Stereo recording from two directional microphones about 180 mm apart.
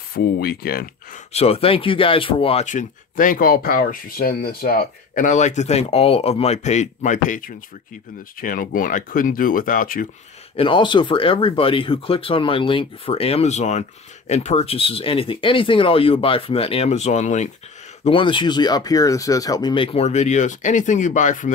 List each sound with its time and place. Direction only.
0.1 s speech: 60° left (ahead or behind)
1.3 s speech: 35° left (ahead or behind)
2.6 s speech: 45° left (ahead or behind)
10.5 s speech: 30° left (ahead or behind)
18.0 s speech: 30° left (ahead or behind); by 21.5 s 45° left (ahead or behind)